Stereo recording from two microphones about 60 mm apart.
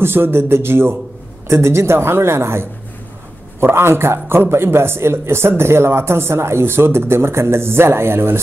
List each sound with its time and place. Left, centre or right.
0.0 s a man's voice: right
3.6 s a man's voice: right